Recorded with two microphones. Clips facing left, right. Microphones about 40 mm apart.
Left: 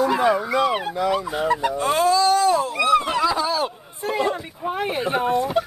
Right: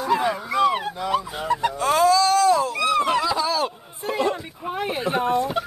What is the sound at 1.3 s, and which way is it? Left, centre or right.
Speech, centre.